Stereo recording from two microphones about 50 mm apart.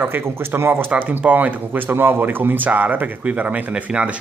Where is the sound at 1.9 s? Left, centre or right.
Right.